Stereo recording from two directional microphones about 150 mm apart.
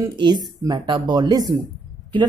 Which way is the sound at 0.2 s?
30° right (ahead or behind).